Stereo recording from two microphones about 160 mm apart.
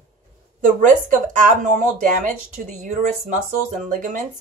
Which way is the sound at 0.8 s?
55° right (ahead or behind).